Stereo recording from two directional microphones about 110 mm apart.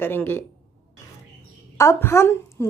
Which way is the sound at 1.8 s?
25° left (ahead or behind).